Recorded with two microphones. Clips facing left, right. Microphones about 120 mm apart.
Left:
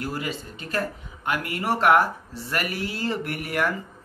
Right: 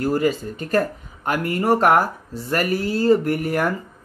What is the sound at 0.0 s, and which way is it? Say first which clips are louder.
Speech: right 10 dB; 45° right (ahead or behind).